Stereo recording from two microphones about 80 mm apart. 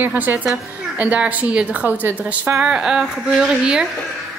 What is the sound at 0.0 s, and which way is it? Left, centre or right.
A woman's voice, right.